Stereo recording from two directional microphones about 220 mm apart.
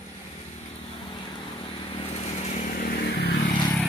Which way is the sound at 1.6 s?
25° left (ahead or behind).